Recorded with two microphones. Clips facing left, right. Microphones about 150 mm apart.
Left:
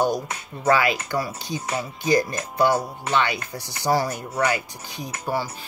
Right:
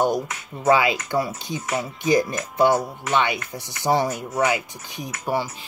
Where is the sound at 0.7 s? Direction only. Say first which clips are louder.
Right 2 dB; 20° right (ahead or behind).